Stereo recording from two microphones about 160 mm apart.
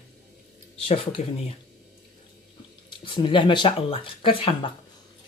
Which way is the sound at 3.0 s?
30° left (ahead or behind).